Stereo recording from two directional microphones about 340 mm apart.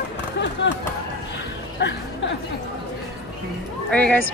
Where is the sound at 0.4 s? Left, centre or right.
Left.